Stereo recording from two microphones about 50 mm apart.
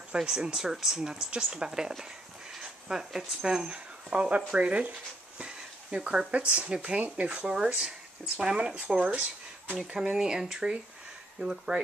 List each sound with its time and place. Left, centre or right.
0.1 s speech: centre
5.4 s a sound: centre
6.3 s speech: right
9.8 s speech: centre